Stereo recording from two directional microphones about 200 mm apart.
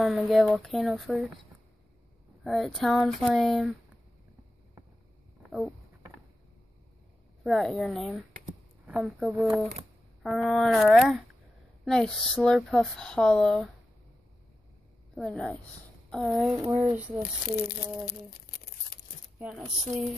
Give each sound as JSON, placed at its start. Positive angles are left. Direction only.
{"t": 0.0, "sound": "speech", "side_deg": 0}
{"t": 2.4, "sound": "speech", "side_deg": 0}
{"t": 5.4, "sound": "a sound", "side_deg": 0}
{"t": 7.4, "sound": "speech", "side_deg": 0}
{"t": 15.1, "sound": "speech", "side_deg": 5}
{"t": 17.6, "sound": "crumpling", "side_deg": 50}
{"t": 19.3, "sound": "speech", "side_deg": -5}